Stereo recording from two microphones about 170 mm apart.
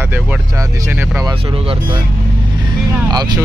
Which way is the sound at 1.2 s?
35° right (ahead or behind).